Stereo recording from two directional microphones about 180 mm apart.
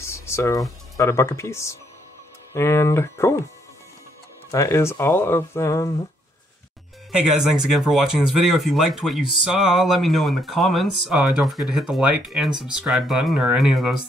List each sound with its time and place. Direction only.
0.0 s speech: 15° left (ahead or behind)
4.5 s speech: 15° left (ahead or behind)
7.1 s speech: 5° right (ahead or behind)